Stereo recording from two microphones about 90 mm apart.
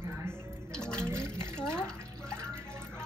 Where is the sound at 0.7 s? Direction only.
10° left (ahead or behind).